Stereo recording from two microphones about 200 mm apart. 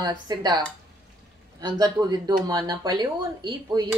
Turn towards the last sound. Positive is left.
turn(degrees=-20)  # may be behind; listen again after turning